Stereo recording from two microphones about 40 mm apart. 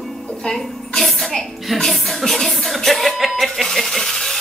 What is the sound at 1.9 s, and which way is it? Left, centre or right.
Music, centre.